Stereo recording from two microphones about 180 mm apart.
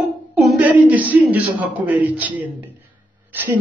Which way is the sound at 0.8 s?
10° right (ahead or behind).